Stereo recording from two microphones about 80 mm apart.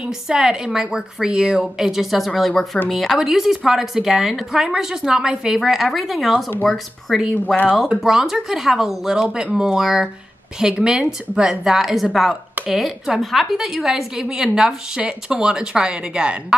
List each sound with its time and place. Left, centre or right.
0.0 s a woman's voice: centre
7.4 s speech: left
7.9 s a woman's voice: centre